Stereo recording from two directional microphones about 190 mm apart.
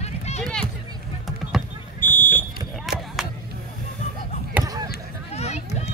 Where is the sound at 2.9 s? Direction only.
Centre (ahead or behind).